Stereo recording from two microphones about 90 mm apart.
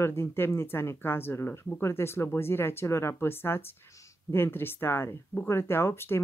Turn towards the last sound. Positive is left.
turn(degrees=25)  # may be behind; listen again after turning